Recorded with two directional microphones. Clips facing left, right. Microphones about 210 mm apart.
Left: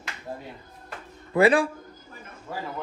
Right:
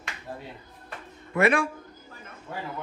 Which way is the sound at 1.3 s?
30° left (ahead or behind).